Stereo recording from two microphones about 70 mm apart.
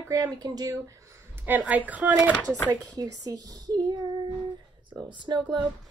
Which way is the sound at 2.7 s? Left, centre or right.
Right.